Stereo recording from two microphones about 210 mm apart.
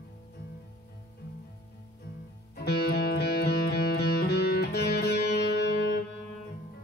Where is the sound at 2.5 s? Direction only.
50° left (ahead or behind).